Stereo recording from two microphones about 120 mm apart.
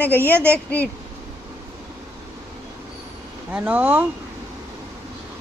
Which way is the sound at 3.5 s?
15° right (ahead or behind).